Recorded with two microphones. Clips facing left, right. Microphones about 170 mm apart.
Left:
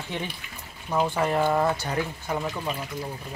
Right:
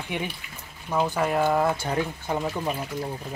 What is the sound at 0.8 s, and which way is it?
Speech, centre (ahead or behind).